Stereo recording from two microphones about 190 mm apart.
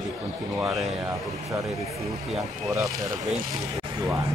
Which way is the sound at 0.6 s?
Centre (ahead or behind).